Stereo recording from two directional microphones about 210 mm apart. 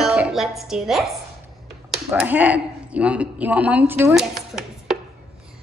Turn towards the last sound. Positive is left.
turn(degrees=0)  # may be behind; listen again after turning